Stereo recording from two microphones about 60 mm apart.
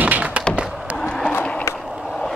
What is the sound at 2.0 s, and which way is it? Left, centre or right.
Vehicle, centre.